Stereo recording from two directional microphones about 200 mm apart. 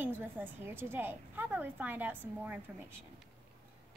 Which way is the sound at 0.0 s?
10° right (ahead or behind).